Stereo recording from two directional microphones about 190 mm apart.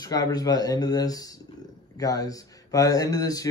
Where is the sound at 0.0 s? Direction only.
20° left (ahead or behind).